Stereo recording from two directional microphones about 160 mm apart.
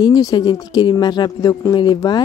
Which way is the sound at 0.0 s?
25° left (ahead or behind).